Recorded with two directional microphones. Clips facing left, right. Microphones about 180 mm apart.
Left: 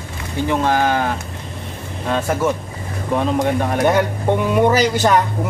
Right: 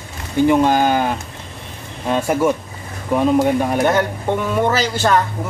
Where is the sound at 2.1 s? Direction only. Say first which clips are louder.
Right 2 dB; 10° right (ahead or behind).